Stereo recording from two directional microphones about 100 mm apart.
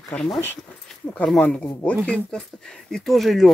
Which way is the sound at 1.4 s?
15° left (ahead or behind).